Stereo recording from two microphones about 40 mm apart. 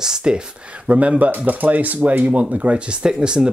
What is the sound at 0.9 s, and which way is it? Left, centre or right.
Speech, right.